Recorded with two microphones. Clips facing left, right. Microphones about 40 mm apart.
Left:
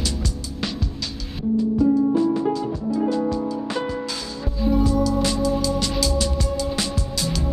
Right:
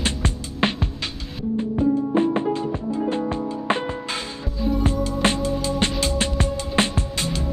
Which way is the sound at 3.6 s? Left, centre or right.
Right.